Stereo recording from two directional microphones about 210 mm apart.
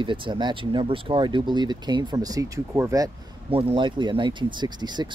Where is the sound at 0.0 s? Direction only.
25° right (ahead or behind).